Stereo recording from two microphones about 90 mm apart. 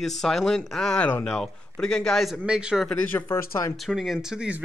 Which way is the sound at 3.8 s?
5° right (ahead or behind).